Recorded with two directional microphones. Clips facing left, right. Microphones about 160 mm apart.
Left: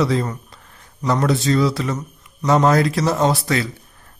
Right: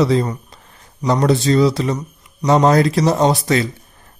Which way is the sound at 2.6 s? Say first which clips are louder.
Right 3 dB; 30° right (ahead or behind).